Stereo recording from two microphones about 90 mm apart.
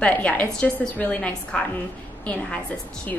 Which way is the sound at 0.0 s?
15° left (ahead or behind).